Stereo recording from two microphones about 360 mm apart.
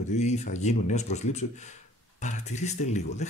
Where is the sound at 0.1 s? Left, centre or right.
Centre.